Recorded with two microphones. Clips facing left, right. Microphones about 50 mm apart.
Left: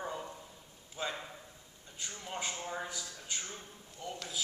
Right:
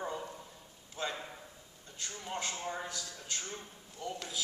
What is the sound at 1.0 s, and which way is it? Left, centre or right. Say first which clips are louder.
Speech: even; centre.